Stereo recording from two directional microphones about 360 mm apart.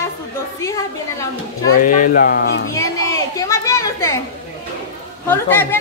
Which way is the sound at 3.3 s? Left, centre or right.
Centre.